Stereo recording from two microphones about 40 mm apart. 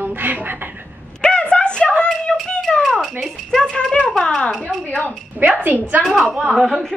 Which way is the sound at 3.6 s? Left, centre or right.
Centre.